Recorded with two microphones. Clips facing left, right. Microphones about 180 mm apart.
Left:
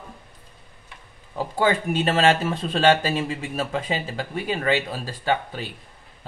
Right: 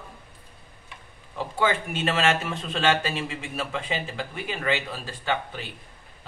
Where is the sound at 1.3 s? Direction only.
35° left (ahead or behind).